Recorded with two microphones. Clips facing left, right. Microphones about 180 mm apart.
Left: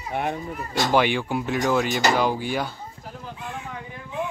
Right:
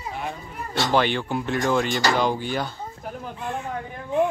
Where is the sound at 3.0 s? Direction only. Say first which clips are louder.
Right 6 dB; 60° right (ahead or behind).